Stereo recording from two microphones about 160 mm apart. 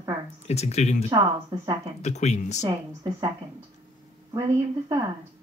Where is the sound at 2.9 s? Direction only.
20° right (ahead or behind).